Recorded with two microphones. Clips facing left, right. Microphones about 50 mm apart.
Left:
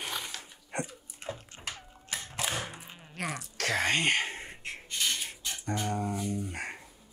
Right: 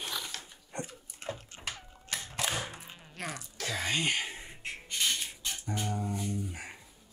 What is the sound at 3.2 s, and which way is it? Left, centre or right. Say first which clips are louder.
Sneeze: left 4 dB; left.